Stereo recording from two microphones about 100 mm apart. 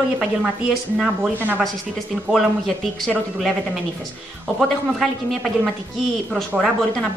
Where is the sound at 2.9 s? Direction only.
5° left (ahead or behind).